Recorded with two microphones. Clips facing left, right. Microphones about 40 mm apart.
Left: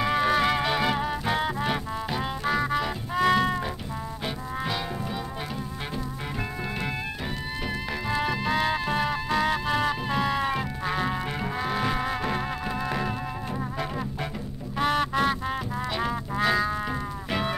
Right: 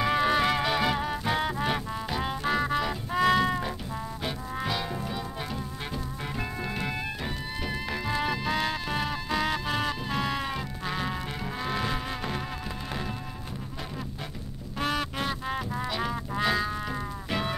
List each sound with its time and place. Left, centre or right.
0.0 s music: centre
7.9 s music: centre
12.1 s music: left
14.8 s music: centre
15.4 s music: centre